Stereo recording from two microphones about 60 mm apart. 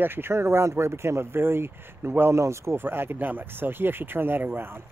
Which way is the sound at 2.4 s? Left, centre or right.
Right.